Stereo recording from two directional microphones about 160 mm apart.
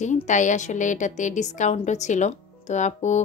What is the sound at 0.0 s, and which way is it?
A woman's voice, 50° left (ahead or behind).